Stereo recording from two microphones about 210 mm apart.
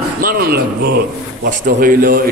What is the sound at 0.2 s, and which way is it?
A man's voice, 45° right (ahead or behind).